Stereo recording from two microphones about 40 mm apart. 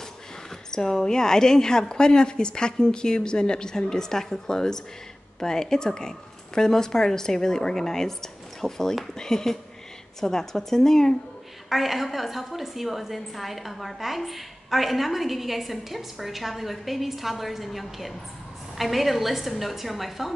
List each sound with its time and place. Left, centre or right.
0.7 s a woman's voice: centre
11.7 s a woman's voice: centre